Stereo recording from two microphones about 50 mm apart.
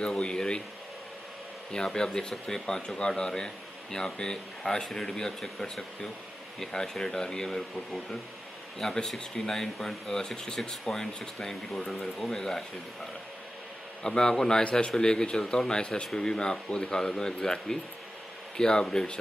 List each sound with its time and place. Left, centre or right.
0.0 s speech: centre
1.7 s speech: centre
14.0 s speech: centre